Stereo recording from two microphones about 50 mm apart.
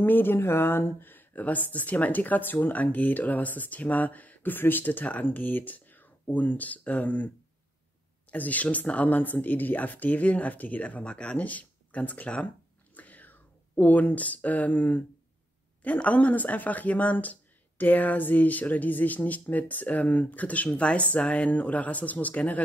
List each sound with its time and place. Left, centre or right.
0.0 s speech: left
8.3 s speech: left